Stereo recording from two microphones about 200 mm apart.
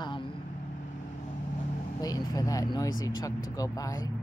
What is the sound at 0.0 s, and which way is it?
Vehicle, 25° left (ahead or behind).